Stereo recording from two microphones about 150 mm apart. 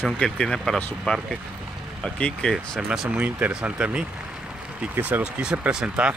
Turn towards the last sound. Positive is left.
turn(degrees=-5)  # may be behind; listen again after turning